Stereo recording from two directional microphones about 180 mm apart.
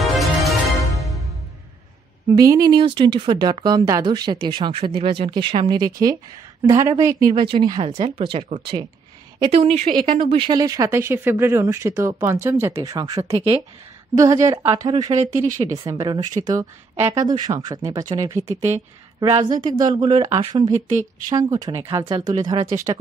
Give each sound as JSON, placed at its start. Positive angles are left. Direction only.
{"t": 0.0, "sound": "music", "side_deg": 0}
{"t": 2.3, "sound": "speech", "side_deg": -20}
{"t": 15.4, "sound": "speech", "side_deg": -45}
{"t": 15.8, "sound": "speech", "side_deg": -20}
{"t": 19.2, "sound": "a woman's voice", "side_deg": -35}
{"t": 19.8, "sound": "speech", "side_deg": -25}